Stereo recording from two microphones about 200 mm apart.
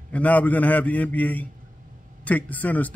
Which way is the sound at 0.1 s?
5° left (ahead or behind).